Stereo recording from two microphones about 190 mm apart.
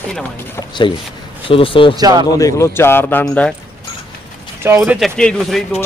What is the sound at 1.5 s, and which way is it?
Speech, 30° left (ahead or behind).